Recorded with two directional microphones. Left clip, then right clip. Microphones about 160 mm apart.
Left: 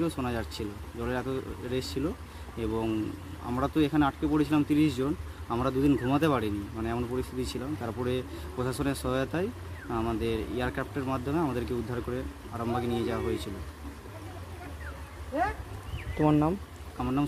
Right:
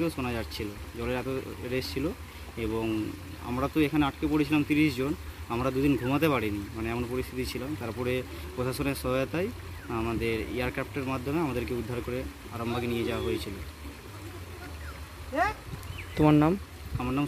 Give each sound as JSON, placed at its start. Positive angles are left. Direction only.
{"t": 0.0, "sound": "speech", "side_deg": 15}
{"t": 16.2, "sound": "speech", "side_deg": -25}